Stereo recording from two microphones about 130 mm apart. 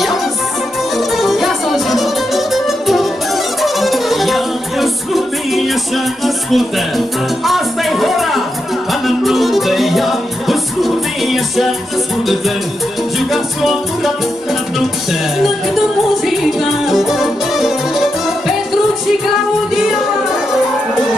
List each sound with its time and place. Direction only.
0.9 s music: centre (ahead or behind)
13.3 s music: centre (ahead or behind)
16.3 s music: centre (ahead or behind)